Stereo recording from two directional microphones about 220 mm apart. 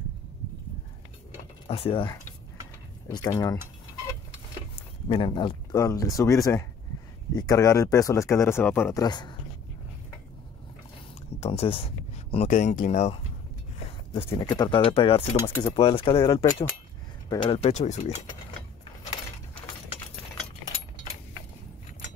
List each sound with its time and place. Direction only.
1.7 s speech: 25° left (ahead or behind)
4.7 s speech: 20° left (ahead or behind)
11.3 s speech: 30° left (ahead or behind)
14.1 s speech: 20° left (ahead or behind)